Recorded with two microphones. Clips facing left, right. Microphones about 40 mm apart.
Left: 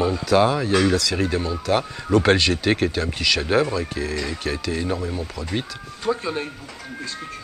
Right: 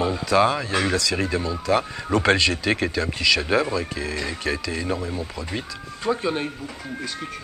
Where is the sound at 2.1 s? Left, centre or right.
Right.